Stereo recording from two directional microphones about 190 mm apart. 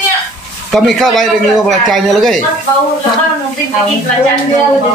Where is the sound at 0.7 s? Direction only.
Centre (ahead or behind).